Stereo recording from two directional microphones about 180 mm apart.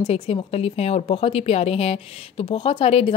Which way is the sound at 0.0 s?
35° left (ahead or behind).